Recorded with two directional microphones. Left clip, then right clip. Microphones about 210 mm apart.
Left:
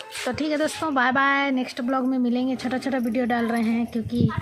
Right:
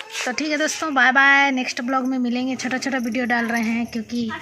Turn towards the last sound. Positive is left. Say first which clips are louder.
# even
turn(degrees=5)  # may be behind; listen again after turning